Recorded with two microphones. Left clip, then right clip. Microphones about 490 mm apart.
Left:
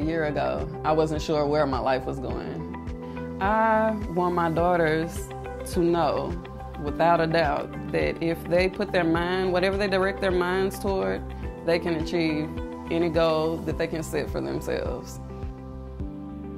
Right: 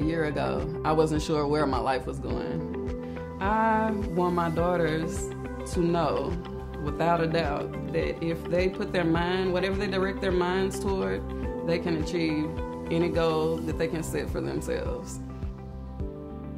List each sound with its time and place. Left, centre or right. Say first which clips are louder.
0.0 s speech: left 2 dB; left
6.9 s speech: left 4 dB; left
11.6 s speech: left 4 dB; left